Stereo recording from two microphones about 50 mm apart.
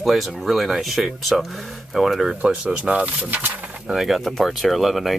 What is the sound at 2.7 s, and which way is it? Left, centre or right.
Speech, right.